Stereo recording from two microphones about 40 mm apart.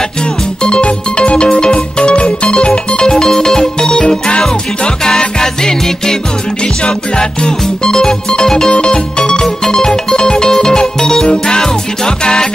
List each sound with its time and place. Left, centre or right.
0.6 s music: left